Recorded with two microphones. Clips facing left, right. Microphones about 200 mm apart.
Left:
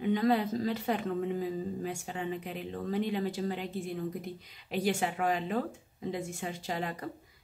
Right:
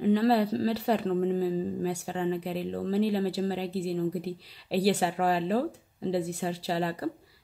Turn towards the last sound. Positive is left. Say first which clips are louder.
# right 6 dB
turn(degrees=-35)  # may be behind; listen again after turning